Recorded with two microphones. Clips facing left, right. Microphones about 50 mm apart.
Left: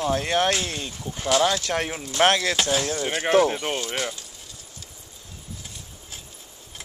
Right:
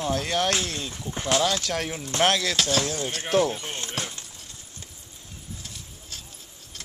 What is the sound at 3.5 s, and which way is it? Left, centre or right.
Speech, left.